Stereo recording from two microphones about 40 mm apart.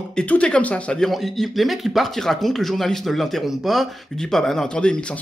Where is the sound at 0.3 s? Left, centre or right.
Left.